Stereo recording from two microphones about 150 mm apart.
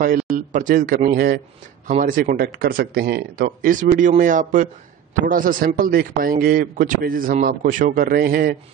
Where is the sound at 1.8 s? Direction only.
60° right (ahead or behind).